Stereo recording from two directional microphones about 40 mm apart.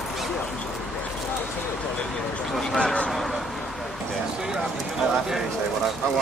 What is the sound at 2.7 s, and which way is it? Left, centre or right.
Speech, left.